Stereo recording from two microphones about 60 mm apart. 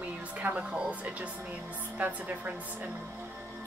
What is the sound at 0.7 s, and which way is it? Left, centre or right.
A woman's voice, right.